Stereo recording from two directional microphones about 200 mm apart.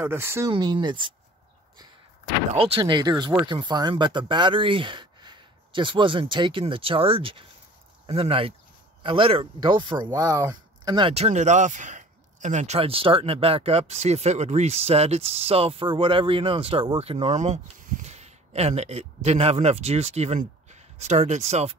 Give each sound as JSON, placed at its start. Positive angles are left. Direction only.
{"t": 0.0, "sound": "speech", "side_deg": -10}
{"t": 2.5, "sound": "speech", "side_deg": -25}